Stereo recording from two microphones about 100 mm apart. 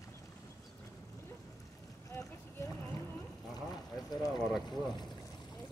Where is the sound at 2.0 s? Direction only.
35° left (ahead or behind).